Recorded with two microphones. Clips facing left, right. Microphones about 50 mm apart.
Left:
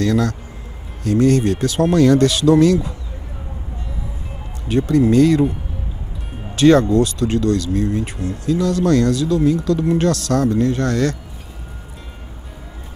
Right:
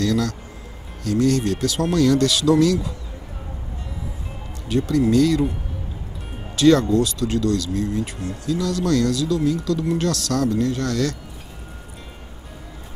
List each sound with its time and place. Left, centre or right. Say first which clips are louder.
0.0 s speech: left 3 dB; left
4.6 s speech: left 4 dB; left
6.5 s speech: left 3 dB; left